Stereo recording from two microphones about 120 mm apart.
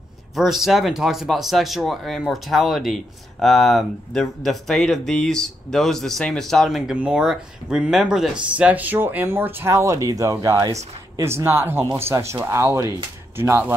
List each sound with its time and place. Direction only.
0.4 s speech: centre (ahead or behind); by 13.7 s 20° right (ahead or behind)